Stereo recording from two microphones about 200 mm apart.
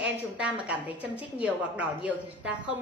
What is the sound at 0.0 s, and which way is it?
A woman's voice, 5° right (ahead or behind).